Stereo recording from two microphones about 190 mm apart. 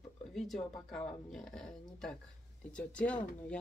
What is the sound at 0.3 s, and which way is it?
Speech, centre (ahead or behind).